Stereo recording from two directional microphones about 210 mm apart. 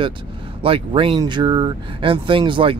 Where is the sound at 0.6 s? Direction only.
25° right (ahead or behind).